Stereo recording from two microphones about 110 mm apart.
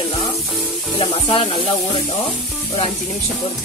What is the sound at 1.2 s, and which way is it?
Speech, 50° left (ahead or behind).